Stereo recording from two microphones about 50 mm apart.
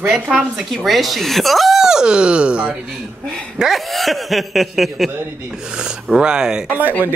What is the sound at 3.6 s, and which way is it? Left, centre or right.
Speech, centre.